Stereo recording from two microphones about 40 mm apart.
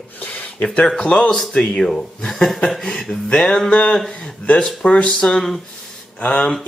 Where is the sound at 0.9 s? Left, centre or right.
Left.